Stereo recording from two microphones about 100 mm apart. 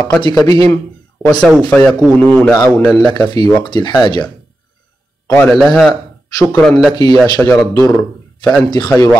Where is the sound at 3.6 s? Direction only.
50° left (ahead or behind).